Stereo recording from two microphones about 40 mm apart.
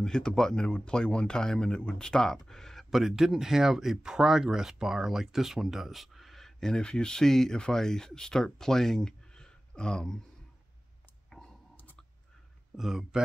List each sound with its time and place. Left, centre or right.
0.0 s speech: centre
0.7 s speech: left
2.4 s a sound: centre
2.9 s speech: centre
11.2 s a sound: centre
12.7 s speech: centre